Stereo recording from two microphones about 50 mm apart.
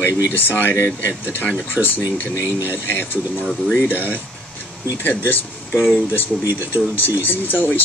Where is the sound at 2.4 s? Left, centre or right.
Right.